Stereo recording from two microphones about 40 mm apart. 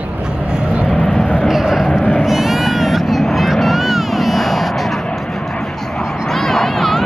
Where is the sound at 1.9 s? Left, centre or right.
Left.